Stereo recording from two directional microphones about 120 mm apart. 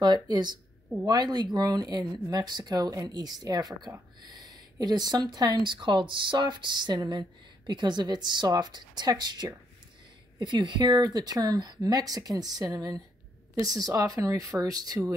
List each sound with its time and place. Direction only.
0.0 s speech: 35° right (ahead or behind)